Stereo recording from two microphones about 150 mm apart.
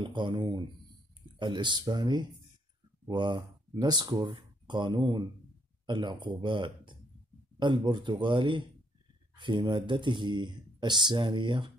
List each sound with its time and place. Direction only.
0.0 s speech: 30° right (ahead or behind)